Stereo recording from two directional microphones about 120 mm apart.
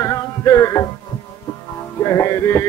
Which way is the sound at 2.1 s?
25° left (ahead or behind).